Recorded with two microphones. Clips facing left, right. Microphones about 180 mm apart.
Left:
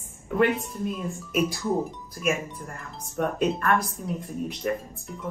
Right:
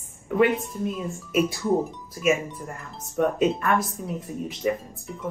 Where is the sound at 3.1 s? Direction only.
Centre (ahead or behind).